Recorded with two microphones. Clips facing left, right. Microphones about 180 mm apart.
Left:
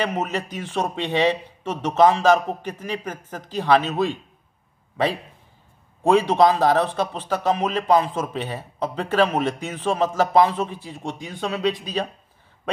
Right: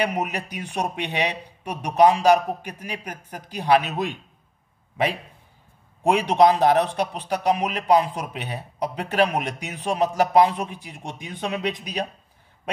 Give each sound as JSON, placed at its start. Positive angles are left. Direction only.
{"t": 0.0, "sound": "a man's voice", "side_deg": -15}
{"t": 6.0, "sound": "a man's voice", "side_deg": -15}